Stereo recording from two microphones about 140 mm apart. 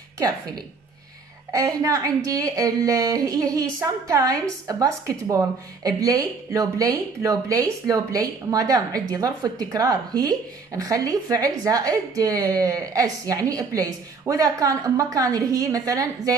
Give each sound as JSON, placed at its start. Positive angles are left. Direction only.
{"t": 1.5, "sound": "a woman's voice", "side_deg": -25}